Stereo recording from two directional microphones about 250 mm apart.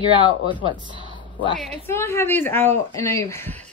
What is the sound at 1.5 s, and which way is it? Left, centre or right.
Speech, centre.